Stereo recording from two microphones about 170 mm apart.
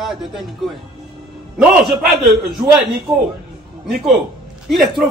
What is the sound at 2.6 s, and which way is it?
Speech, 20° right (ahead or behind).